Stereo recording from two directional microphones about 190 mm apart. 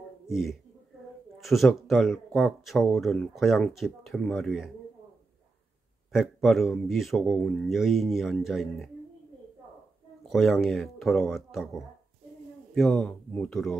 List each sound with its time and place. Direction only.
0.3 s speech: centre (ahead or behind)
6.1 s speech: centre (ahead or behind)
10.2 s speech: centre (ahead or behind)
12.7 s speech: centre (ahead or behind)